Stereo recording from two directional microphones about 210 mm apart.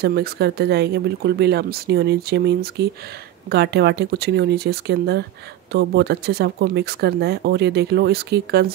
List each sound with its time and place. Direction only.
0.0 s speech: 50° right (ahead or behind)